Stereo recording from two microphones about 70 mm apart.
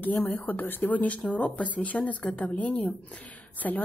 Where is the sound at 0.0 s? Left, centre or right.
Left.